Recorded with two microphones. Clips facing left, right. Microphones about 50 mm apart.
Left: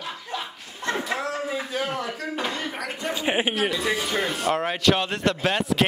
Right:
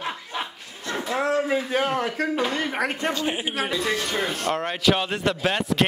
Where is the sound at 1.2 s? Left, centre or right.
Right.